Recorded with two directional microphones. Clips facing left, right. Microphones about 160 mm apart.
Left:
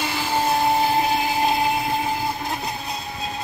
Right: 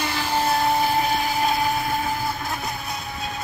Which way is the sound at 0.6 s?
20° left (ahead or behind).